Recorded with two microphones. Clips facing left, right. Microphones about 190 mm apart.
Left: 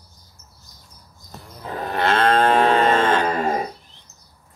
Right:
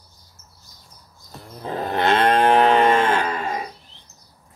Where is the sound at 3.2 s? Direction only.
40° left (ahead or behind).